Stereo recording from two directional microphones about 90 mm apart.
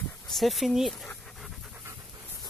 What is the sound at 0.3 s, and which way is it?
Speech, centre (ahead or behind).